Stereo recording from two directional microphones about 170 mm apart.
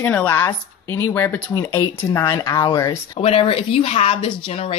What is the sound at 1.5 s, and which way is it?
Speech, 25° left (ahead or behind).